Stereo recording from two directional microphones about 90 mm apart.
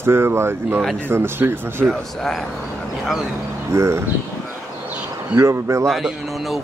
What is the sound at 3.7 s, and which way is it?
Speech, 30° right (ahead or behind).